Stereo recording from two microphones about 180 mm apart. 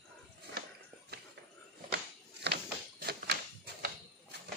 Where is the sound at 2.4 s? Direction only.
60° right (ahead or behind).